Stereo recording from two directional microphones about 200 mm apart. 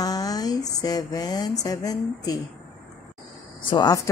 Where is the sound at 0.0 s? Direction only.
20° left (ahead or behind).